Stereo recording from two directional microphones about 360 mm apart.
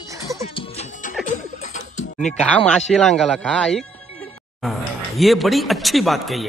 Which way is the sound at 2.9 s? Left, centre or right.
Centre.